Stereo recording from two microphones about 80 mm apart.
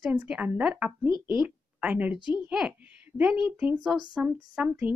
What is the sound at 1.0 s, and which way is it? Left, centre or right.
Speech, left.